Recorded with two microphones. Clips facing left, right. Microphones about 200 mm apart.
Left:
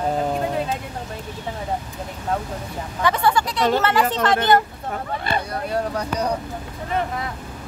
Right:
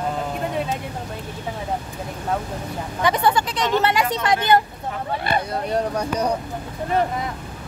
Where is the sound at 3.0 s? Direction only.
20° right (ahead or behind).